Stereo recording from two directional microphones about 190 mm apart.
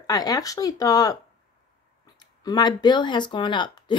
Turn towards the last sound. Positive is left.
turn(degrees=25)  # may be behind; listen again after turning